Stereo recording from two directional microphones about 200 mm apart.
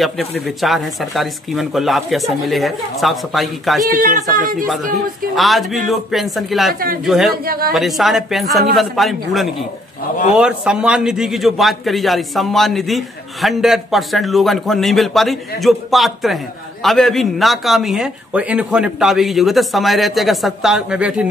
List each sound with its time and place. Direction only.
0.0 s a man's voice: centre (ahead or behind)
3.9 s speech: 45° right (ahead or behind)
5.3 s a man's voice: centre (ahead or behind)
6.7 s speech: 45° right (ahead or behind)
7.1 s a man's voice: centre (ahead or behind)
7.4 s speech: 50° right (ahead or behind)
7.7 s a man's voice: centre (ahead or behind)